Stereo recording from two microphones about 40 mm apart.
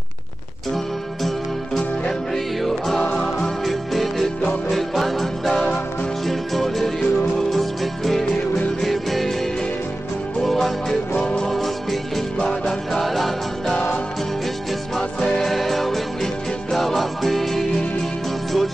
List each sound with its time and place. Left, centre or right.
1.8 s music: centre
3.6 s music: centre
12.4 s music: centre
12.9 s music: centre
15.0 s music: centre